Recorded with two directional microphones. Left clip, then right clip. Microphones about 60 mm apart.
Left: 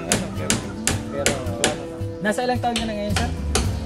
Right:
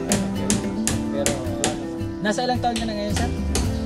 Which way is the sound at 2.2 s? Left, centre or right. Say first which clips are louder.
Left 1 dB; right.